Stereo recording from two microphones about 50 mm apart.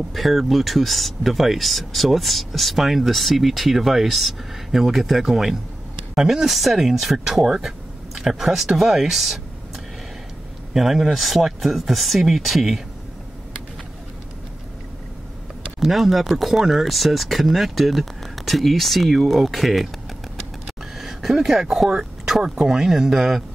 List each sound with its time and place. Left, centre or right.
0.1 s speech: centre
10.7 s speech: centre
15.8 s speech: centre